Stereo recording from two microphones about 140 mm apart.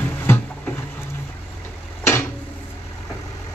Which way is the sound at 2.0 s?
20° left (ahead or behind).